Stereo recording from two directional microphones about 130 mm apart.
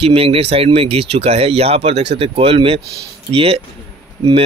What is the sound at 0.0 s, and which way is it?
Speech, 45° right (ahead or behind).